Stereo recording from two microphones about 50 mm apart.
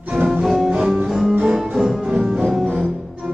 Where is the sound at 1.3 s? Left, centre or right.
Right.